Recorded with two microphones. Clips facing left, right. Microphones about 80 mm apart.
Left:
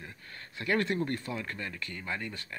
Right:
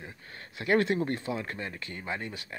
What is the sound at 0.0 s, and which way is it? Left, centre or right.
Speech, right.